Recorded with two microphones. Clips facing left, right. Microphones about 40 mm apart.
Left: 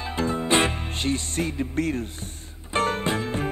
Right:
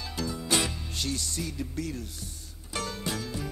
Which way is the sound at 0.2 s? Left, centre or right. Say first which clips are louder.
Left 7 dB; left.